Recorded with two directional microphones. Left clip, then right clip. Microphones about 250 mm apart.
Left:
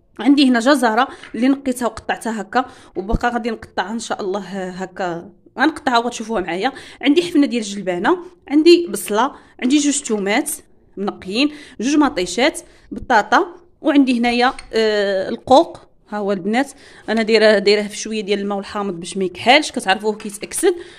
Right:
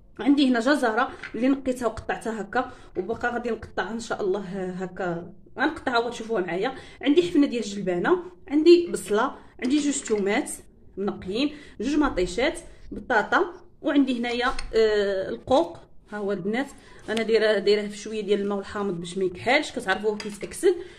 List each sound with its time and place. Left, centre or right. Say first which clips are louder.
0.2 s a woman's voice: left 7 dB; left